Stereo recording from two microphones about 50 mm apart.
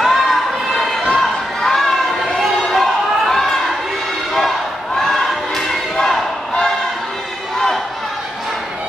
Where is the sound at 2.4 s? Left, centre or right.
Centre.